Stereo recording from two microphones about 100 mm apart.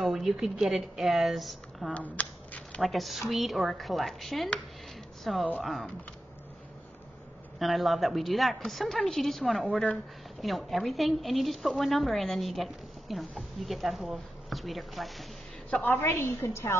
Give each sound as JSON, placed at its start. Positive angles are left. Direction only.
{"t": 0.0, "sound": "a woman's voice", "side_deg": 0}
{"t": 2.0, "sound": "shuffling cards", "side_deg": 15}
{"t": 2.8, "sound": "a woman's voice", "side_deg": 0}
{"t": 7.5, "sound": "a woman's voice", "side_deg": 0}
{"t": 15.8, "sound": "a woman's voice", "side_deg": 20}